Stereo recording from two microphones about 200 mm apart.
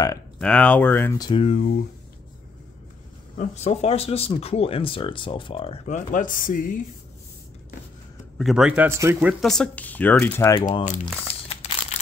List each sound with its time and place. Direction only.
0.4 s speech: 5° left (ahead or behind)
1.4 s speech: 35° left (ahead or behind)
3.3 s speech: 35° left (ahead or behind)
8.4 s a man's voice: centre (ahead or behind)
9.3 s speech: centre (ahead or behind); by 10.8 s 15° left (ahead or behind)
10.8 s crumpling: 35° left (ahead or behind)